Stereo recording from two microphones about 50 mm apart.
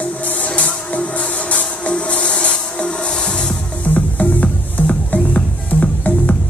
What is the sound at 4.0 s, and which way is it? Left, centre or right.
Music, left.